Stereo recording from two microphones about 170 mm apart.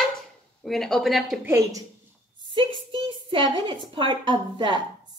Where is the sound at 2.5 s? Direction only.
30° right (ahead or behind).